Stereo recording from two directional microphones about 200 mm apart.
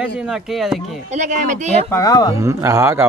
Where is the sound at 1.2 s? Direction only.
40° right (ahead or behind).